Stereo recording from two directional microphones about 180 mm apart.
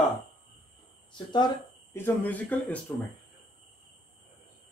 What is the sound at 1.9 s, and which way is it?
Speech, 10° left (ahead or behind).